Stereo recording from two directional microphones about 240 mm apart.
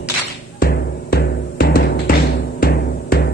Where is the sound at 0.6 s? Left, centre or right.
Left.